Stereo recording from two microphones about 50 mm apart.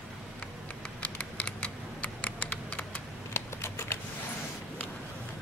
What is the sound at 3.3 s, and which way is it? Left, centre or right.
Typing, left.